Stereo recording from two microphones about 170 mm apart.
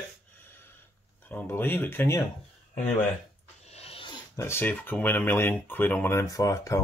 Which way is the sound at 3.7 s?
35° left (ahead or behind).